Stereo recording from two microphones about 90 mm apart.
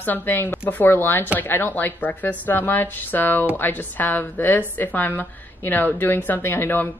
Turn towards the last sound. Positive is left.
turn(degrees=25)  # may be behind; listen again after turning